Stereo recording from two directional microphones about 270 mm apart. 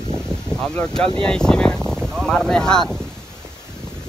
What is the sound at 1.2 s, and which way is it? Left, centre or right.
Speech, centre.